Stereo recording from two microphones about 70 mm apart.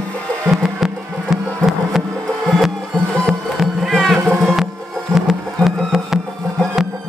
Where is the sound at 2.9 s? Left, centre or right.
Right.